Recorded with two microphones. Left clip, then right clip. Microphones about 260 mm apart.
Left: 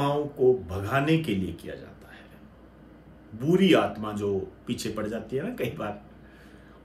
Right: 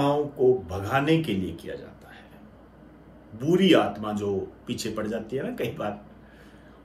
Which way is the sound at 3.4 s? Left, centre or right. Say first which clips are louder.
Right 1 dB; centre.